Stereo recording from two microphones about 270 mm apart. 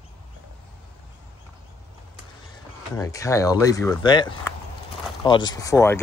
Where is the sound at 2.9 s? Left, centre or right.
Centre.